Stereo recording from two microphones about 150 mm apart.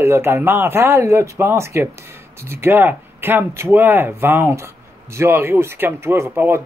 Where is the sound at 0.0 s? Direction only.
15° right (ahead or behind).